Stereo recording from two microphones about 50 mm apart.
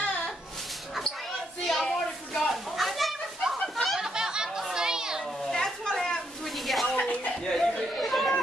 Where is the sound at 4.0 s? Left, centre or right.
Centre.